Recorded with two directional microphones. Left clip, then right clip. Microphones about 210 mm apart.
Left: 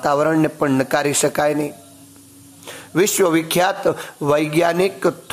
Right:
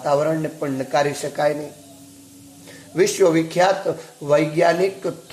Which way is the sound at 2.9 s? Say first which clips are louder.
Even; 30° left (ahead or behind).